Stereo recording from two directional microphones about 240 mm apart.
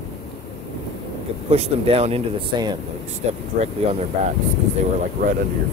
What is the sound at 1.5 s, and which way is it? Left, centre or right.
Speech, right.